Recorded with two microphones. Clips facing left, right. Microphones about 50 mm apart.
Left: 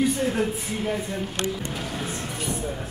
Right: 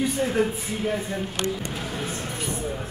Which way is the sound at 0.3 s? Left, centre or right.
Centre.